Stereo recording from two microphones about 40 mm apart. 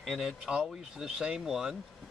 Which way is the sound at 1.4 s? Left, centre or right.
Centre.